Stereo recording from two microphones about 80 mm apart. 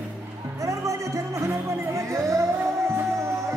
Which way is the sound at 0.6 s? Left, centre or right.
Right.